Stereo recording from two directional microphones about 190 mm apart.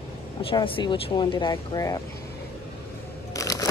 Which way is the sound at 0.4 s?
30° left (ahead or behind).